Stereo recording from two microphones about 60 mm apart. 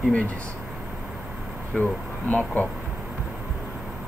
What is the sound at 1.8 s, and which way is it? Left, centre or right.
Speech, left.